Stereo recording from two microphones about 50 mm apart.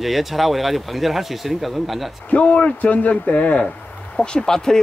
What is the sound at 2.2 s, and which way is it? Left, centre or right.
A man's voice, left.